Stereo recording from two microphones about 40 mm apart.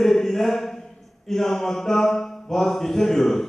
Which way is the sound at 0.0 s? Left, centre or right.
Centre.